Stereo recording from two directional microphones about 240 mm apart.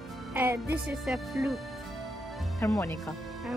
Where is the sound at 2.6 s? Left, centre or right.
Centre.